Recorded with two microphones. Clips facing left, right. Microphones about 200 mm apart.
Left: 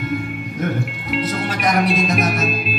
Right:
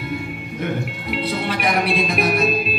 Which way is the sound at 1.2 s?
45° left (ahead or behind).